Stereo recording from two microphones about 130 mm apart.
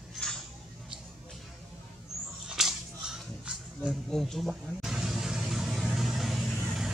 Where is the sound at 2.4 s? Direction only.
5° right (ahead or behind).